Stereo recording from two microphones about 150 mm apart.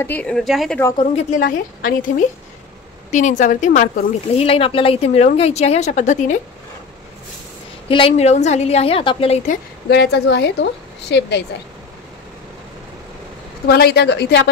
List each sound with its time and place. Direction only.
0.0 s speech: 10° left (ahead or behind)
0.9 s a woman's voice: 45° left (ahead or behind)
1.4 s speech: 65° left (ahead or behind)
4.4 s a woman's voice: 40° left (ahead or behind)
7.9 s a woman's voice: 40° left (ahead or behind)
9.5 s a woman's voice: 90° left
13.7 s a woman's voice: 90° left